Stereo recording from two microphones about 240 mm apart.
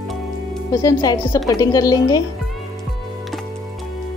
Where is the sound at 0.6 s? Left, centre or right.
Centre.